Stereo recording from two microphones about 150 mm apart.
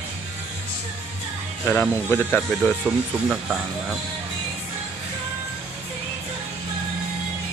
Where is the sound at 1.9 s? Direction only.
15° left (ahead or behind).